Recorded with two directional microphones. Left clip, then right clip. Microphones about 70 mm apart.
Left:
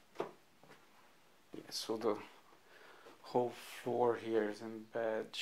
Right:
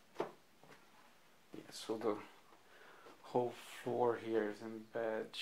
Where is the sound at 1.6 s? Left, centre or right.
Left.